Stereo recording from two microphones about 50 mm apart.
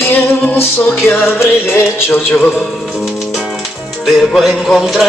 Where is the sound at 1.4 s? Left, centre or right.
Left.